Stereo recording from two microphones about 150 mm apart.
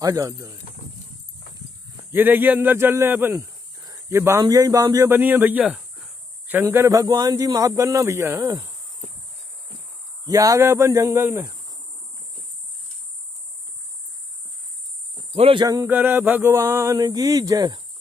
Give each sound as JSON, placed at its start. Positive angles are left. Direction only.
{"t": 0.0, "sound": "speech", "side_deg": -20}
{"t": 2.1, "sound": "a man's voice", "side_deg": -10}
{"t": 10.2, "sound": "speech", "side_deg": -20}
{"t": 15.3, "sound": "speech", "side_deg": -40}
{"t": 15.6, "sound": "speech", "side_deg": -25}
{"t": 15.9, "sound": "speech", "side_deg": -15}